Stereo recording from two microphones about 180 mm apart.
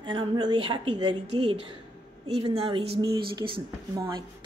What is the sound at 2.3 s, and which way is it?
Speech, 30° right (ahead or behind).